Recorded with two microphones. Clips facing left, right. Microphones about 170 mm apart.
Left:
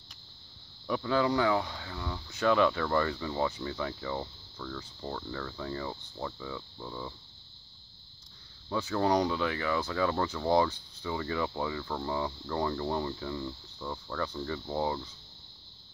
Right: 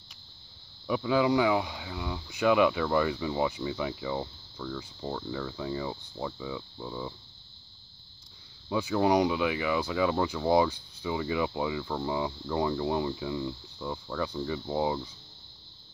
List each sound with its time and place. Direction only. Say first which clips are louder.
0.8 s speech: right 3 dB; 10° right (ahead or behind)
8.6 s speech: right 3 dB; 10° right (ahead or behind)